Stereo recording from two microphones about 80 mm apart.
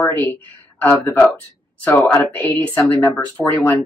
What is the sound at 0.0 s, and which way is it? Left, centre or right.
Speech, left.